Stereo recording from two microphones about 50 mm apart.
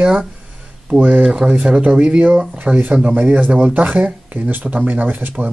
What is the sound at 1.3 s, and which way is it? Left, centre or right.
Speech, centre.